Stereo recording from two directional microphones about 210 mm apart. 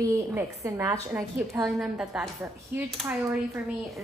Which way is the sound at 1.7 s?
Centre (ahead or behind).